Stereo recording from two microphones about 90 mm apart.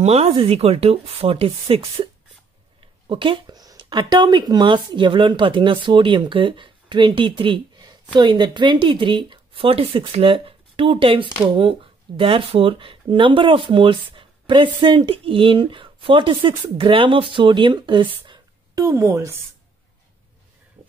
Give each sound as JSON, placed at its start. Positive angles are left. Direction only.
{"t": 0.3, "sound": "speech", "side_deg": -90}
{"t": 2.8, "sound": "a sound", "side_deg": -75}
{"t": 3.5, "sound": "speech", "side_deg": -50}
{"t": 12.2, "sound": "speech", "side_deg": -90}
{"t": 18.9, "sound": "a woman's voice", "side_deg": -35}